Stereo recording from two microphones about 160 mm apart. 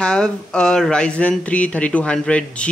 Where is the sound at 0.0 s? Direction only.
5° left (ahead or behind).